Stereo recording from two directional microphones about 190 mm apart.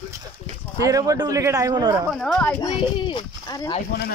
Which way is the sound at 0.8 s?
15° right (ahead or behind).